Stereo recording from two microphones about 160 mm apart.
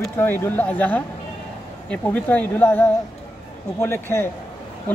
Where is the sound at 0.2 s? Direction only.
15° left (ahead or behind).